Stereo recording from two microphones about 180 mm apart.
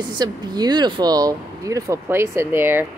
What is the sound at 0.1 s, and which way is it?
A woman's voice, 25° right (ahead or behind).